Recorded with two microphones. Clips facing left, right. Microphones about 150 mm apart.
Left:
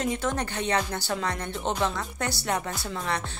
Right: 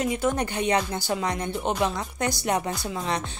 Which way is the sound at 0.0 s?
10° right (ahead or behind).